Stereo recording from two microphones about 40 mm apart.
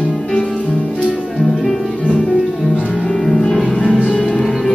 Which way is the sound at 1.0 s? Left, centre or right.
Centre.